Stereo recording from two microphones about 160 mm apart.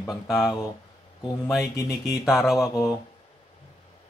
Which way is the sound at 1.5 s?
Centre (ahead or behind).